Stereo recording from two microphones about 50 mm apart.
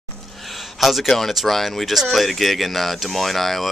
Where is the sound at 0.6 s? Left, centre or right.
Centre.